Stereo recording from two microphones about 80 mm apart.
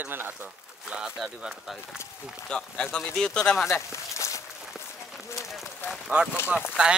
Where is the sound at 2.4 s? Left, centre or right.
Centre.